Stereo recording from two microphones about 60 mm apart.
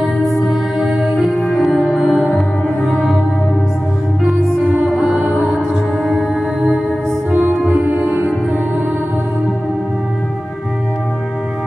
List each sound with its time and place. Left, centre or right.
0.2 s music: centre
4.8 s music: centre
7.2 s music: right